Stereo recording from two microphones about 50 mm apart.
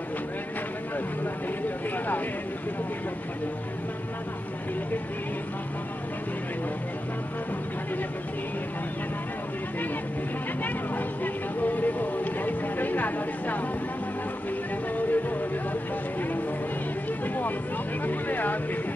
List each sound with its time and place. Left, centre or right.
11.6 s speech: left
18.0 s speech: left